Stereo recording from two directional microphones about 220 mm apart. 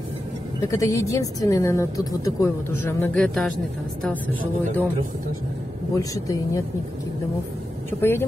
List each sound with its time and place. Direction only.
0.7 s speech: 15° left (ahead or behind)
5.9 s speech: 15° left (ahead or behind)
8.0 s speech: 10° left (ahead or behind)